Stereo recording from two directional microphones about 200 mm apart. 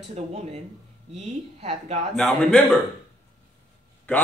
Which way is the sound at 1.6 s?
30° right (ahead or behind).